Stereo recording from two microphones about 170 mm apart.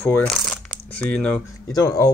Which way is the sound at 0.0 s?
10° left (ahead or behind).